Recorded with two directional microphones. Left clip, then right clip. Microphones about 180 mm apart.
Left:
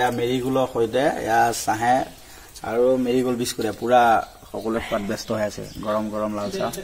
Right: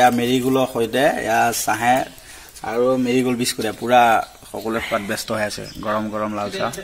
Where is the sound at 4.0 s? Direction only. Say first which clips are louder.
Right 2 dB; 5° right (ahead or behind).